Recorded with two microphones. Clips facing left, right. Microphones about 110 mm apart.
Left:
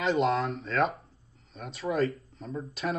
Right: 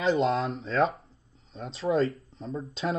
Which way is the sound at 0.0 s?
30° right (ahead or behind).